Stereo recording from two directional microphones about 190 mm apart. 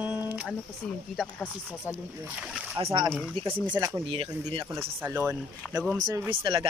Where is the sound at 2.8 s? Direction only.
15° right (ahead or behind).